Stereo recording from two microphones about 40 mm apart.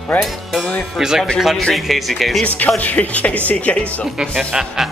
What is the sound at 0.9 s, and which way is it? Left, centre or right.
Speech, centre.